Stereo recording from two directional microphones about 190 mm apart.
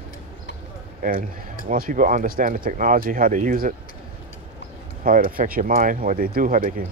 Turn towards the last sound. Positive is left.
turn(degrees=-45)  # may be behind; listen again after turning